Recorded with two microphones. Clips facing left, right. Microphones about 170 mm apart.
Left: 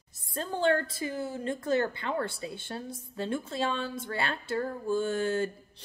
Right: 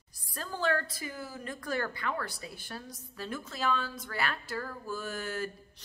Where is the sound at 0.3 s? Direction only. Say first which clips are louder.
Left 5 dB; 25° left (ahead or behind).